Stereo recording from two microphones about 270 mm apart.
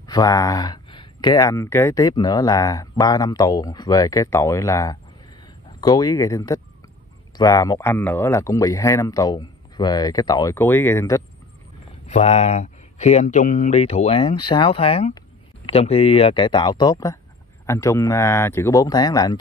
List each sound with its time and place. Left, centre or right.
0.0 s speech: centre
12.1 s speech: left